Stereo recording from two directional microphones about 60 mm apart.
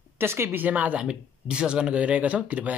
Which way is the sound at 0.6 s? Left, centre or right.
Right.